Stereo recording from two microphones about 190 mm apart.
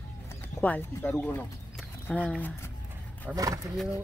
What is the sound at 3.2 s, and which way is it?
Speech, 20° right (ahead or behind).